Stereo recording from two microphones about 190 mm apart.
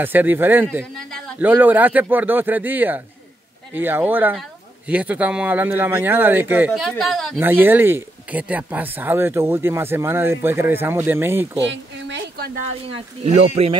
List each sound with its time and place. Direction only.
0.0 s speech: 10° right (ahead or behind)
7.3 s speech: 10° right (ahead or behind)
11.6 s a woman's voice: 70° right (ahead or behind)
12.5 s speech: 35° right (ahead or behind)